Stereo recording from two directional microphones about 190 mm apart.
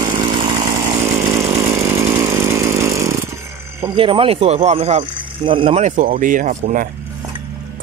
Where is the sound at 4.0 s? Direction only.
30° right (ahead or behind).